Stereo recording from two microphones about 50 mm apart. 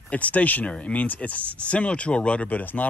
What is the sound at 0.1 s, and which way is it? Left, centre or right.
Speech, left.